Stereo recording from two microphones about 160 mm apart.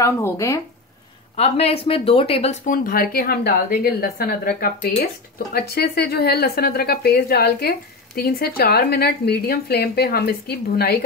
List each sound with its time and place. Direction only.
0.0 s speech: 20° left (ahead or behind)
1.3 s speech: 40° left (ahead or behind)
2.6 s speech: 60° left (ahead or behind); by 11.1 s 75° left (ahead or behind)